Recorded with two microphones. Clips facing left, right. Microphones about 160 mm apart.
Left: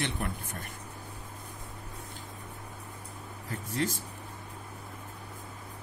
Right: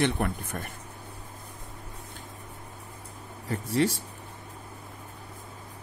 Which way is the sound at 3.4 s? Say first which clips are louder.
Right 7 dB; 70° right (ahead or behind).